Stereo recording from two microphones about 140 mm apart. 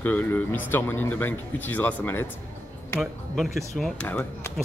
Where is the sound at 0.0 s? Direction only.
15° left (ahead or behind).